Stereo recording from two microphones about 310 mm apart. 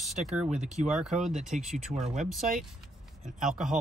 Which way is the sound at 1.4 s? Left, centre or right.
Right.